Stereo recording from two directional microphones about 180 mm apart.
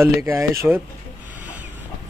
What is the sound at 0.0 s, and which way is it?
Speech, 15° right (ahead or behind).